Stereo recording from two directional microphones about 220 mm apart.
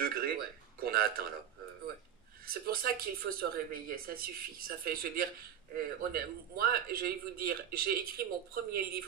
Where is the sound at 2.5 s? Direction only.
40° right (ahead or behind).